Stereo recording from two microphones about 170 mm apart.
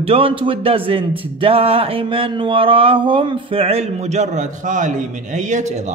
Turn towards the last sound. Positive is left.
turn(degrees=-45)  # may be behind; listen again after turning